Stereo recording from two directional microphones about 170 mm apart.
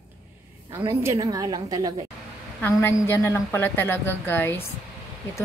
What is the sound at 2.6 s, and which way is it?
A woman's voice, 15° left (ahead or behind).